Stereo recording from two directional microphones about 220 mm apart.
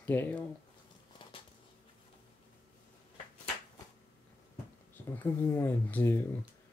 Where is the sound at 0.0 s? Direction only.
10° left (ahead or behind).